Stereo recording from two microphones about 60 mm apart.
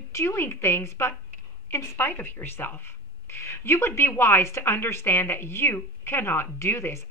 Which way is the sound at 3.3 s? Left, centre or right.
Left.